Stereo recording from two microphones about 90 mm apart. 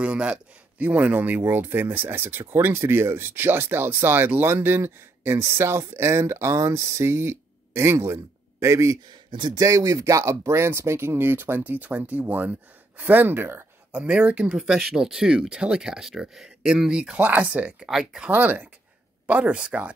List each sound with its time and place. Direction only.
0.0 s speech: 10° right (ahead or behind)
13.9 s speech: 15° right (ahead or behind)